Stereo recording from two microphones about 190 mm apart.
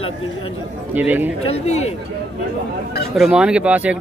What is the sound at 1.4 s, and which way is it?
Speech, 30° left (ahead or behind).